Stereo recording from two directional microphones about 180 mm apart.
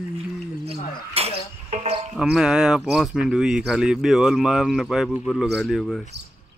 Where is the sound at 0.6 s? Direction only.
35° right (ahead or behind).